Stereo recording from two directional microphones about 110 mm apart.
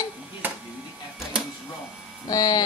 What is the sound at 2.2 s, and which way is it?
Speech, 35° left (ahead or behind).